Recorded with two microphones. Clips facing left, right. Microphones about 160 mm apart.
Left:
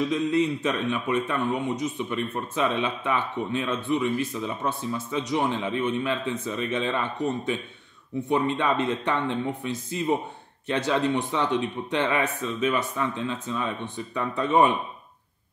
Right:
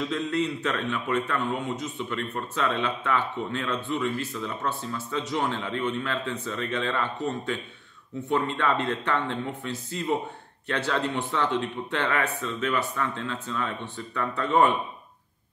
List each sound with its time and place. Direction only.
0.1 s speech: 15° left (ahead or behind)